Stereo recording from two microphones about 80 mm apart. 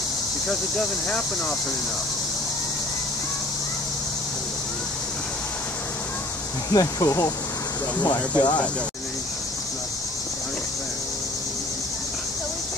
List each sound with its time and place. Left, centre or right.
0.5 s speech: centre
6.7 s speech: left
8.0 s speech: left